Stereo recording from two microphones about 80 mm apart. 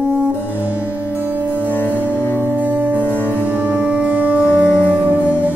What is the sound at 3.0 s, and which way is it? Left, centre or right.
Music, left.